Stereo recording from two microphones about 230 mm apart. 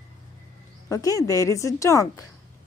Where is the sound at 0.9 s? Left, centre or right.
Centre.